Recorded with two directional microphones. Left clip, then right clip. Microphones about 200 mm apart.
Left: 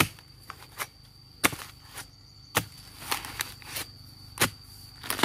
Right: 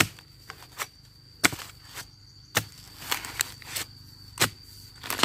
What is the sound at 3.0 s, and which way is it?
Walk, 10° right (ahead or behind).